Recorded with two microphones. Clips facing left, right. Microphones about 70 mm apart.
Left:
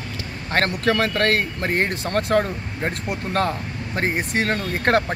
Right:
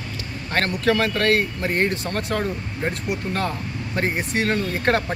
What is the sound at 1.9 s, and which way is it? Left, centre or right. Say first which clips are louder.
Speech: left 4 dB; left.